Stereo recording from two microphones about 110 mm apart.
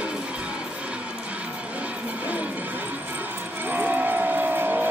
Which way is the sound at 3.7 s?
15° right (ahead or behind).